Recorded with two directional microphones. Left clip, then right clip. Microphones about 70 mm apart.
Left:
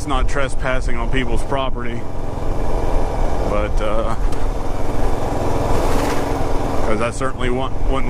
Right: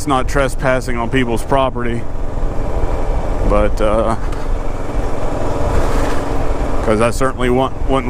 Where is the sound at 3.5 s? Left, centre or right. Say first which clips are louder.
Right 9 dB; right.